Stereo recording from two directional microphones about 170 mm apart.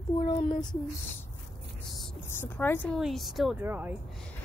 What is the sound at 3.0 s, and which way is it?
Speech, centre (ahead or behind).